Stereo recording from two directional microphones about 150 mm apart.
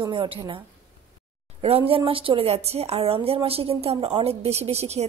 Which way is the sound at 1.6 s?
40° right (ahead or behind).